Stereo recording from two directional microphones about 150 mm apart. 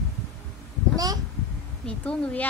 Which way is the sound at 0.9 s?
25° right (ahead or behind).